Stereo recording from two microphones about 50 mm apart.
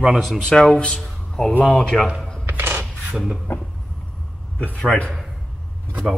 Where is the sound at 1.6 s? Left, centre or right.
Centre.